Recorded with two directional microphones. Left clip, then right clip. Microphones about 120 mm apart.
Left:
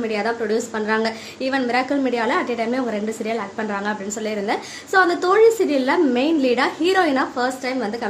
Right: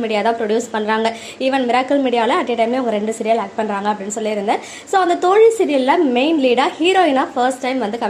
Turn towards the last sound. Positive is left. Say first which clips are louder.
# right 5 dB
turn(degrees=-15)  # may be behind; listen again after turning